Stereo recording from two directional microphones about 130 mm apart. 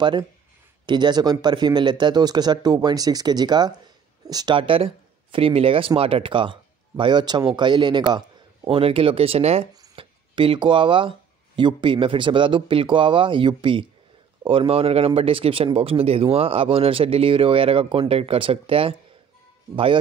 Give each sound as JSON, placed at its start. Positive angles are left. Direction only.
{"t": 0.0, "sound": "speech", "side_deg": -35}
{"t": 8.6, "sound": "speech", "side_deg": -45}
{"t": 9.9, "sound": "speech", "side_deg": -40}